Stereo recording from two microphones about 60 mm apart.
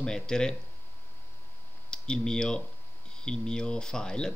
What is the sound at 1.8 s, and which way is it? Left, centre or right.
Speech, centre.